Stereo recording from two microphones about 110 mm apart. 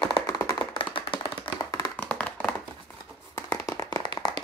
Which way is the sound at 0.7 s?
50° left (ahead or behind).